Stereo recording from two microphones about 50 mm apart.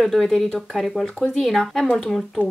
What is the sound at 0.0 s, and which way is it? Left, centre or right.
Speech, centre.